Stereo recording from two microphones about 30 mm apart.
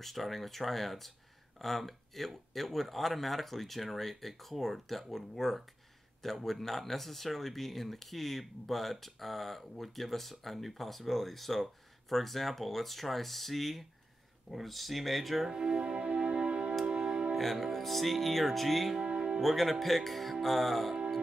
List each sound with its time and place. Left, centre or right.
0.0 s speech: centre
15.4 s speech: right
15.8 s music: right
17.4 s music: centre
17.7 s speech: centre